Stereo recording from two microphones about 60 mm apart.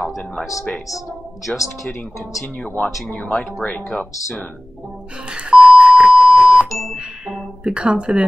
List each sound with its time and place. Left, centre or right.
1.5 s speech: left
5.3 s beep: centre
7.0 s a sound: centre